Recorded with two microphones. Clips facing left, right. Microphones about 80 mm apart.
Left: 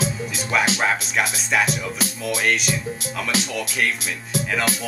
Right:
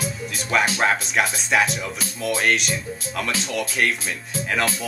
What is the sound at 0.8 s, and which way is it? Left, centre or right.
Speech, centre.